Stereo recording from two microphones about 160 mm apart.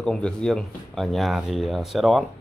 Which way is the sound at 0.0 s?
5° left (ahead or behind).